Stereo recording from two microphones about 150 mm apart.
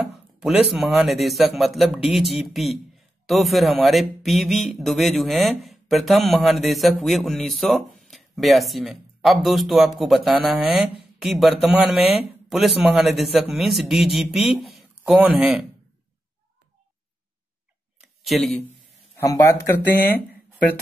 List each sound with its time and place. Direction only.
0.1 s speech: 5° right (ahead or behind)
18.0 s a sound: centre (ahead or behind)
19.1 s speech: 20° left (ahead or behind)